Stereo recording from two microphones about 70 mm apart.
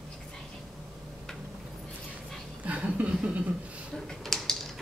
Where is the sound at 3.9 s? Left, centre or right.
Centre.